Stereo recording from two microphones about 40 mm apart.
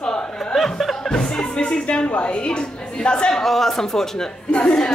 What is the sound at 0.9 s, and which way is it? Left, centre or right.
A woman's voice, centre.